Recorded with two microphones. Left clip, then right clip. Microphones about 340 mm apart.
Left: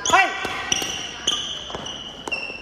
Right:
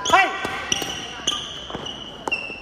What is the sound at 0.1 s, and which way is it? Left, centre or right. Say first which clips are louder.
Basketball bounce: even; centre.